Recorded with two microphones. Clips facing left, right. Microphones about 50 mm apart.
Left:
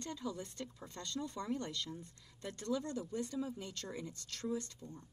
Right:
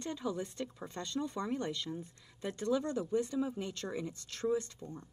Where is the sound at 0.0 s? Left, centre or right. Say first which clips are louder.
Right 5 dB; right.